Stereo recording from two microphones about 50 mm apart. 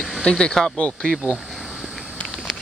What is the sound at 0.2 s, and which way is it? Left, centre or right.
Speech, centre.